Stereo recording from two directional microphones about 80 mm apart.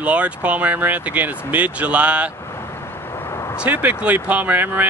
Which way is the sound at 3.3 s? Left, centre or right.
Left.